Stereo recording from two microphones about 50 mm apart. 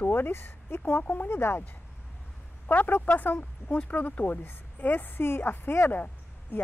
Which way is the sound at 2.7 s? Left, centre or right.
Left.